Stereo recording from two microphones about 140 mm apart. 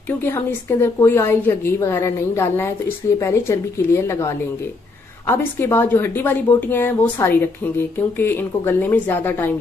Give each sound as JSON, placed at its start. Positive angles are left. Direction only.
{"t": 0.2, "sound": "a woman's voice", "side_deg": 15}